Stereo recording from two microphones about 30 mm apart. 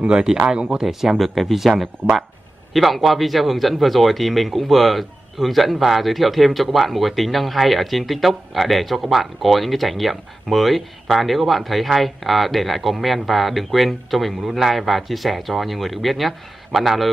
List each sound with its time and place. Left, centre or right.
0.0 s speech: right
0.3 s speech: centre
0.8 s speech: centre